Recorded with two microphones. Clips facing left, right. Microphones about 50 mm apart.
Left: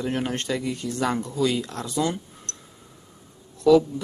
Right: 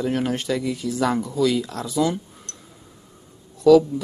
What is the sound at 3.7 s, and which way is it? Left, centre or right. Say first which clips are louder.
Speech: right 3 dB; centre.